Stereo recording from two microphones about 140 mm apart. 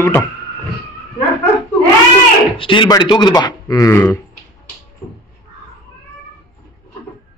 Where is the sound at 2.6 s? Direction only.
35° left (ahead or behind); by 4.2 s 20° left (ahead or behind).